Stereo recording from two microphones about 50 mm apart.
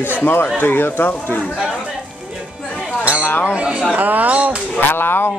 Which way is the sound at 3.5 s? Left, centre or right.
Right.